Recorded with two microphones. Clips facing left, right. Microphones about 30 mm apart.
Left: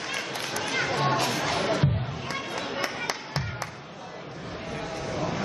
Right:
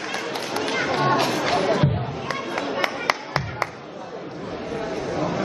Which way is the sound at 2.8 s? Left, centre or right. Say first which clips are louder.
Right 7 dB; right.